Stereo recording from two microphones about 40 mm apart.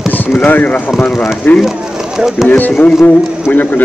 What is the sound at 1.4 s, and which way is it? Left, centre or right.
Speech, left.